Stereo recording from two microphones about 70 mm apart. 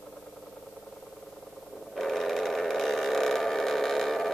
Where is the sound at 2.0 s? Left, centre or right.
Centre.